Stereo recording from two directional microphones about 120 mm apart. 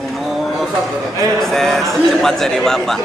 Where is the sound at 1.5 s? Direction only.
5° left (ahead or behind).